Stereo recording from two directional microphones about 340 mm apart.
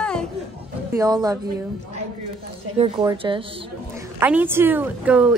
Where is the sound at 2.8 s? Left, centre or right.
Centre.